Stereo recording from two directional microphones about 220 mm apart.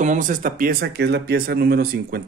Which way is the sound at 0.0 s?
35° right (ahead or behind).